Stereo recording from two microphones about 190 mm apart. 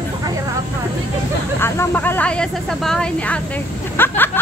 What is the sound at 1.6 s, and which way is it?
Speech, 10° left (ahead or behind).